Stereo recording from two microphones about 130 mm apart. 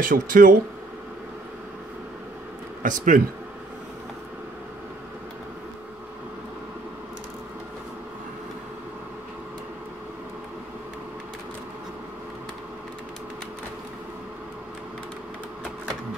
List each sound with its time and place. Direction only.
0.0 s speech: 90° right
2.8 s speech: 90° right